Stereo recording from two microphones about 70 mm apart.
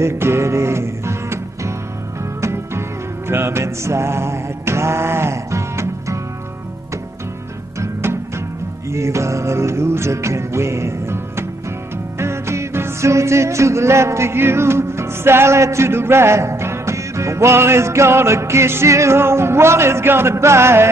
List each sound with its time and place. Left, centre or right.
0.0 s music: right
7.8 s music: right